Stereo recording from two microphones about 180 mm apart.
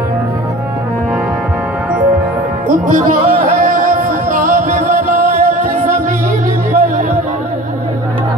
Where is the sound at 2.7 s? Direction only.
50° right (ahead or behind).